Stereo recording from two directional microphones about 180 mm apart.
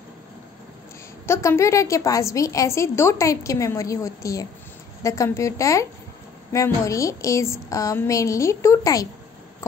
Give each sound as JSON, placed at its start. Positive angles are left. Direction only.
{"t": 1.2, "sound": "a woman's voice", "side_deg": 15}